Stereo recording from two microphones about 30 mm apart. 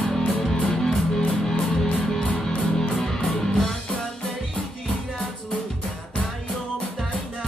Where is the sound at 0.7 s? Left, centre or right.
Centre.